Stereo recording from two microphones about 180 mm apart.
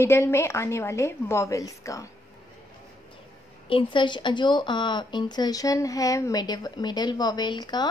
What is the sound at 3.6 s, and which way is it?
Speech, 30° left (ahead or behind).